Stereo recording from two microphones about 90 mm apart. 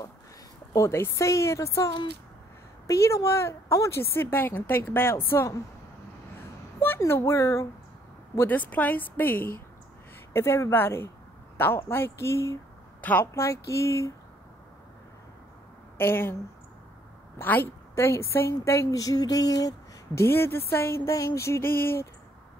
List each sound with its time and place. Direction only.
0.7 s a woman's voice: 30° left (ahead or behind)
7.0 s a woman's voice: 30° left (ahead or behind)
8.4 s speech: 20° left (ahead or behind)
13.0 s speech: 20° left (ahead or behind)
13.3 s a woman's voice: 35° left (ahead or behind)
16.0 s speech: 25° left (ahead or behind)
17.4 s a woman's voice: 20° left (ahead or behind); by 19.7 s 40° left (ahead or behind)
20.2 s speech: 25° left (ahead or behind)